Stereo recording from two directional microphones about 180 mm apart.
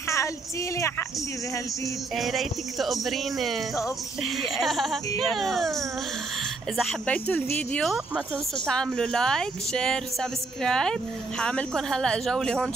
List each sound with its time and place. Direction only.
0.7 s speech: 15° left (ahead or behind)
2.1 s speech: centre (ahead or behind)